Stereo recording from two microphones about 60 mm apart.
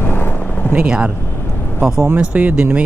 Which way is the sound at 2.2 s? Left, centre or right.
Right.